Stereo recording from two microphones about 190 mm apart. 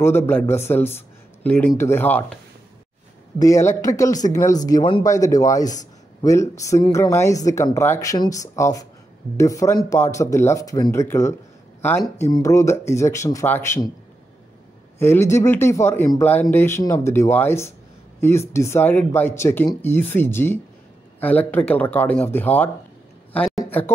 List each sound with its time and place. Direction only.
0.0 s speech: 10° left (ahead or behind)
3.3 s speech: 15° left (ahead or behind)
15.0 s speech: 10° left (ahead or behind)
23.3 s a sound: 5° left (ahead or behind)